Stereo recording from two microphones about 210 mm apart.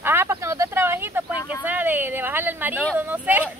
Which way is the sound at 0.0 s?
10° right (ahead or behind).